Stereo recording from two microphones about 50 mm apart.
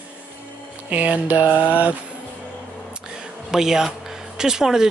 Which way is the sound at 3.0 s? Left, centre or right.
Centre.